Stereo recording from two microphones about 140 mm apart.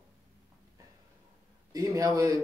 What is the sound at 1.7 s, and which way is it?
Speech, 25° right (ahead or behind).